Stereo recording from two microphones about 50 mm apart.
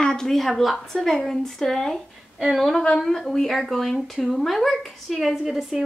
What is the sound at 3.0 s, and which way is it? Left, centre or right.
Speech, centre.